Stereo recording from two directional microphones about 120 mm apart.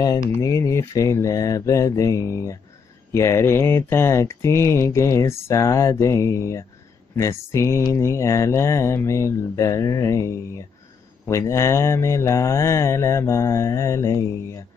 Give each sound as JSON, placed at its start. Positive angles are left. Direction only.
{"t": 0.3, "sound": "speech", "side_deg": 25}